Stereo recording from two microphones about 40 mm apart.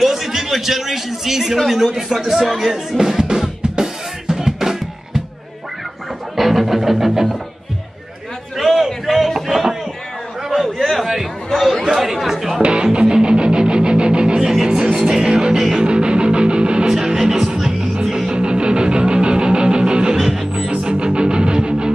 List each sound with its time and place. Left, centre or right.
0.0 s a man's voice: centre
1.6 s music: centre
6.3 s music: centre
8.5 s a sound: centre
10.5 s chatter: centre
11.9 s speech: centre
12.6 s music: right
14.5 s music: centre
15.8 s music: right
16.9 s music: centre
18.3 s music: right
20.2 s music: centre
20.8 s music: right